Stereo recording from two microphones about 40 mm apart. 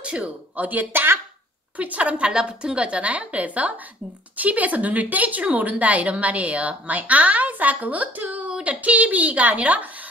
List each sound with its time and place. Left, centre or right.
0.0 s speech: right
0.6 s a woman's voice: right
2.2 s a woman's voice: right